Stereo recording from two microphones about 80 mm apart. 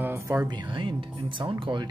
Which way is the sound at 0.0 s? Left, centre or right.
Right.